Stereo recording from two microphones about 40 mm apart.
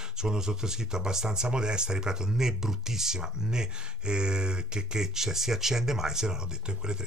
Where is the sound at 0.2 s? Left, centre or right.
Centre.